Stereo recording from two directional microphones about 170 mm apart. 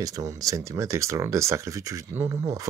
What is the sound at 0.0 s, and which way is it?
Speech, 20° right (ahead or behind).